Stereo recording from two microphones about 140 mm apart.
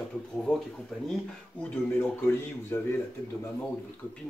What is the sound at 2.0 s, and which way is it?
Speech, 15° left (ahead or behind).